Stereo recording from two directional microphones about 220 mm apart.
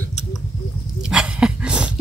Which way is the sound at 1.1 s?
5° right (ahead or behind).